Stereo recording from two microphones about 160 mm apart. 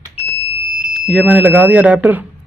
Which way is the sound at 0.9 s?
Centre (ahead or behind).